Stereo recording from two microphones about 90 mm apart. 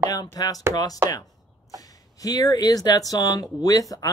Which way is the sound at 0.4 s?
50° left (ahead or behind).